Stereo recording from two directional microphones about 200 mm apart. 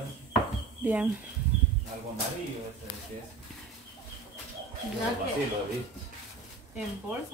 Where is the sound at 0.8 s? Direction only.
10° right (ahead or behind).